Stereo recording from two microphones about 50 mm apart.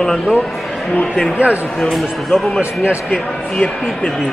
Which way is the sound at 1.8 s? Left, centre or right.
Centre.